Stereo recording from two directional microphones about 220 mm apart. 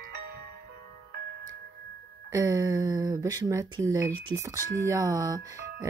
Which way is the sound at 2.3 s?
15° right (ahead or behind).